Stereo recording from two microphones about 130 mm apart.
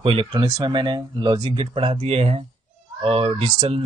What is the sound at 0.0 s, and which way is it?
Speech, 45° right (ahead or behind).